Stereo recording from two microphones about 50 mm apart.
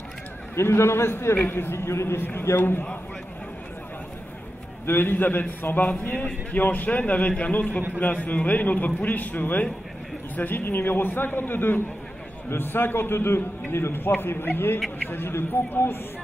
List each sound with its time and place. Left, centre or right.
0.6 s a man's voice: left
2.2 s a man's voice: left
4.8 s a man's voice: left